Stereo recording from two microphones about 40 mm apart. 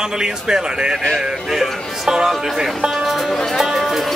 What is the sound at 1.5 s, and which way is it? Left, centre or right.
Music, centre.